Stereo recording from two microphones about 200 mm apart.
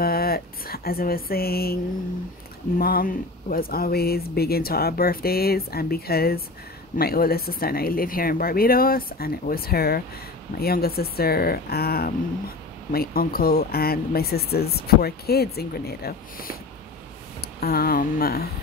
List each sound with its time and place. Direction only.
0.0 s speech: 50° left (ahead or behind)
2.8 s speech: 45° left (ahead or behind)